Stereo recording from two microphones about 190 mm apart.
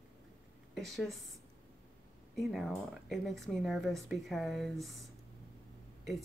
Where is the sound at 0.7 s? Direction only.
Centre (ahead or behind).